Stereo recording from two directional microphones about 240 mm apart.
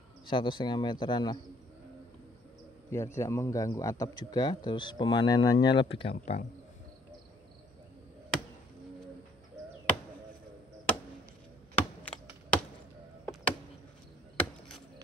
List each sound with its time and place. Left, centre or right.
0.3 s speech: centre
2.9 s a man's voice: centre
11.7 s computer keyboard: centre
13.2 s chop: centre